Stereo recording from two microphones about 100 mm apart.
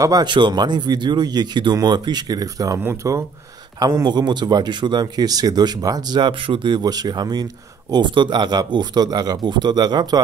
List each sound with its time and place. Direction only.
0.0 s speech: 35° right (ahead or behind)
0.3 s speech: 50° right (ahead or behind); by 3.3 s 30° right (ahead or behind)
3.8 s speech: 45° right (ahead or behind)